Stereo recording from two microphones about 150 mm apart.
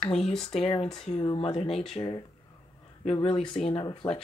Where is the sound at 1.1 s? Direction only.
40° left (ahead or behind).